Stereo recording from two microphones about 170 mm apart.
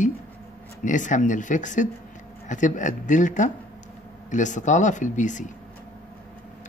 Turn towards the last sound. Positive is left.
turn(degrees=45)  # may be behind; listen again after turning